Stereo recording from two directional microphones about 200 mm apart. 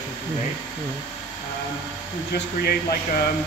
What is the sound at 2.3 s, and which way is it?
Speech, 50° left (ahead or behind).